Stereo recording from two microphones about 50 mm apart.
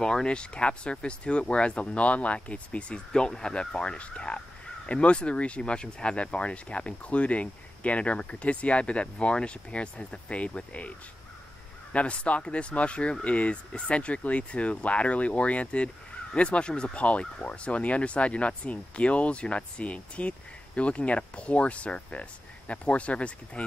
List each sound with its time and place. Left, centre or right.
0.0 s speech: centre
3.1 s speech: centre